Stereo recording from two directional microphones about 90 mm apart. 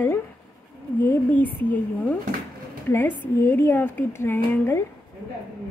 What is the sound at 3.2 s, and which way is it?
Speech, 20° left (ahead or behind).